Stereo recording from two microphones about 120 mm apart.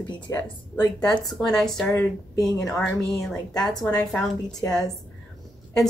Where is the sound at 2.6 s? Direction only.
5° left (ahead or behind).